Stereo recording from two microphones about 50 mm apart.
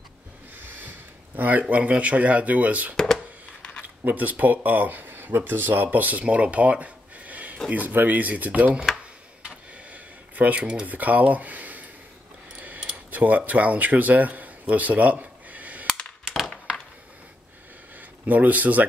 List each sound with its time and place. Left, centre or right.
0.7 s speech: right
4.0 s speech: right
9.4 s a sound: right
10.9 s speech: right
12.9 s a sound: right
13.5 s speech: right
18.2 s speech: right